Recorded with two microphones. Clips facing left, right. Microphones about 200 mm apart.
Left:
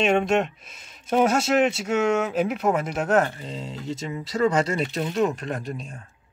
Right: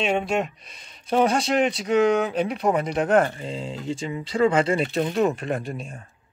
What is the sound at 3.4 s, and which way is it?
Speech, 30° right (ahead or behind).